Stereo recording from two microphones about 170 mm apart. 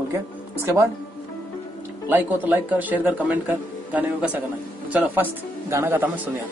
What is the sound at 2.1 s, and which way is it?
Speech, 10° right (ahead or behind).